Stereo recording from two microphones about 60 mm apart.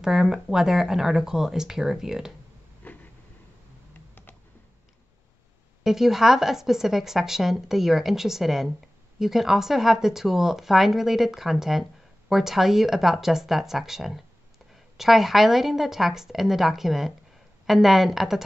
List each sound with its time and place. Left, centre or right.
0.0 s speech: centre
2.8 s a sound: left
5.9 s speech: centre